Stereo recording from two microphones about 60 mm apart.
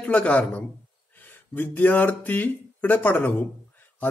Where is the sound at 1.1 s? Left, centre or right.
Left.